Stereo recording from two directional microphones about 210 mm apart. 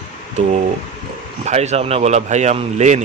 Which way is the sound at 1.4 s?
30° right (ahead or behind).